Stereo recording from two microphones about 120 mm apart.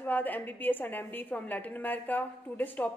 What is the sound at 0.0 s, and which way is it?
A woman's voice, 15° left (ahead or behind).